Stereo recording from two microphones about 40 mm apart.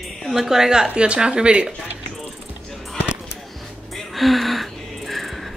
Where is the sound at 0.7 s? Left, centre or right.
Right.